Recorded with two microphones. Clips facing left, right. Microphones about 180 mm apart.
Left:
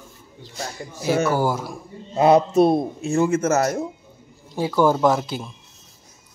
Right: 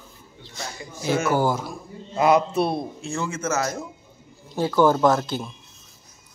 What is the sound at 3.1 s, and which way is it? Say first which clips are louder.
Speech: left 8 dB; 55° left (ahead or behind).